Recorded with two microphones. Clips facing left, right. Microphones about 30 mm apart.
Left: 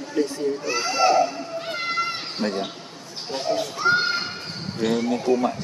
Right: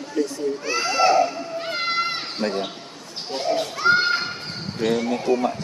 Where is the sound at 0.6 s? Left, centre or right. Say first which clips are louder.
Right 2 dB; right.